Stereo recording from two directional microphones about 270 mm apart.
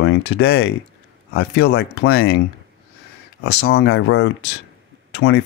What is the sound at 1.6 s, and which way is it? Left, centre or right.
Speech, left.